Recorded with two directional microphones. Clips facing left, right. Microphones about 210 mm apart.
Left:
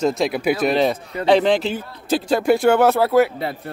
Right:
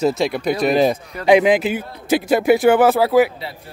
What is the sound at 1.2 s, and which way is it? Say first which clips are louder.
A man's voice: right 2 dB; 10° right (ahead or behind).